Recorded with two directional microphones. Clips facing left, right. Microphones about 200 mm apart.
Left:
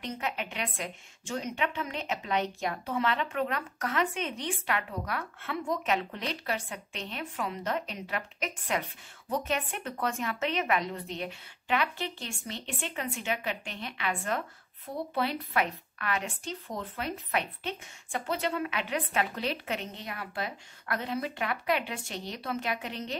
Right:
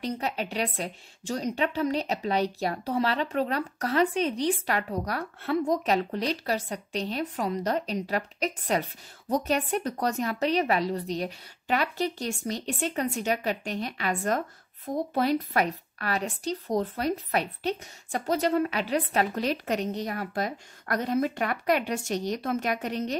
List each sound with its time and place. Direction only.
0.0 s a woman's voice: 35° right (ahead or behind)